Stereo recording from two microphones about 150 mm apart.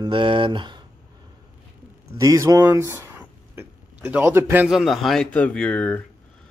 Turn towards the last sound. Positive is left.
turn(degrees=10)  # may be behind; listen again after turning